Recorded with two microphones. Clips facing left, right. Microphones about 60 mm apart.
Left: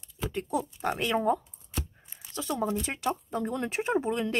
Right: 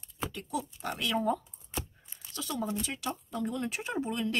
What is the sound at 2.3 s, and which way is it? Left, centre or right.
Speech, left.